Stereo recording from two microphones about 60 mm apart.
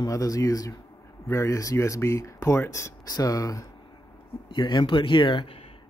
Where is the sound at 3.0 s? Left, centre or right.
Left.